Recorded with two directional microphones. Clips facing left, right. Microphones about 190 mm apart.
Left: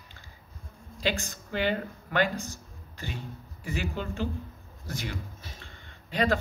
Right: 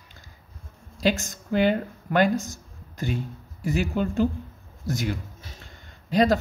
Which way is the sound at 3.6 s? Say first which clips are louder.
Right 8 dB; 45° right (ahead or behind).